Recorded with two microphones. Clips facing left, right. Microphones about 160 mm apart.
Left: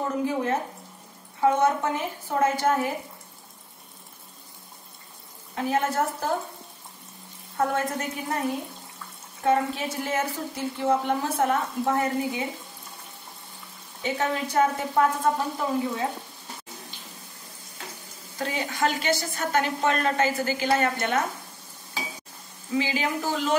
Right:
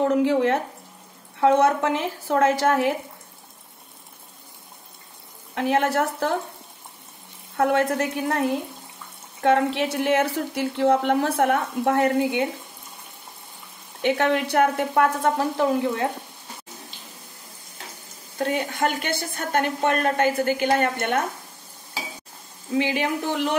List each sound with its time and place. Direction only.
0.0 s a woman's voice: 75° right (ahead or behind)
5.5 s a woman's voice: 70° right (ahead or behind)
7.5 s a woman's voice: 65° right (ahead or behind)
14.0 s a woman's voice: 65° right (ahead or behind)
18.4 s a woman's voice: 55° right (ahead or behind)
22.8 s a woman's voice: 60° right (ahead or behind)